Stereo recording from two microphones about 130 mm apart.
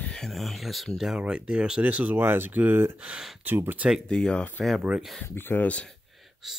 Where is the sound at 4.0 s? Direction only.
5° left (ahead or behind).